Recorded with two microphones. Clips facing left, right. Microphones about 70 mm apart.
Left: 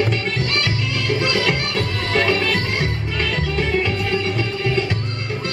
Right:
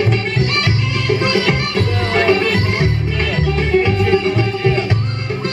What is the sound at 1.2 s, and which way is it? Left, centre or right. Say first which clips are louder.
Music: right 4 dB; centre.